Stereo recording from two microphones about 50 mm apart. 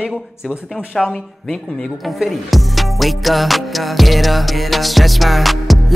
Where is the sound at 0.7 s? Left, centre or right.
Centre.